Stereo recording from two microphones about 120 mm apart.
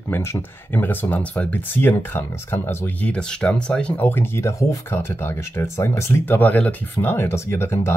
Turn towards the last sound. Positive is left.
turn(degrees=20)  # may be behind; listen again after turning